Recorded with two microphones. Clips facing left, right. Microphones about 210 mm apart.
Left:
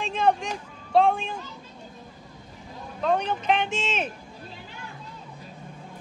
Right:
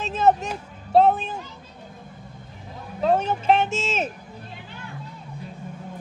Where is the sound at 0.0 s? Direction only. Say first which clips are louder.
Right 3 dB; 40° right (ahead or behind).